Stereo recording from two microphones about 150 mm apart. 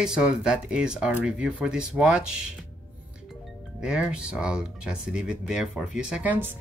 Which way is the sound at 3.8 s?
5° right (ahead or behind).